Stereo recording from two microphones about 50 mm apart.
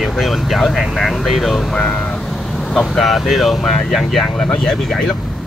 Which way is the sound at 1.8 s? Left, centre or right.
Left.